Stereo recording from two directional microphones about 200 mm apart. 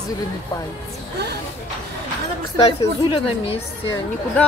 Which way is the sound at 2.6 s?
25° left (ahead or behind).